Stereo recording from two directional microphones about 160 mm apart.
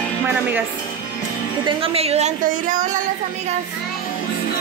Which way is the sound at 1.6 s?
35° right (ahead or behind).